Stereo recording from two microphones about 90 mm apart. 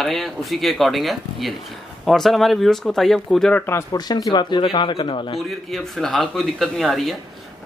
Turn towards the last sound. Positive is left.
turn(degrees=0)  # may be behind; listen again after turning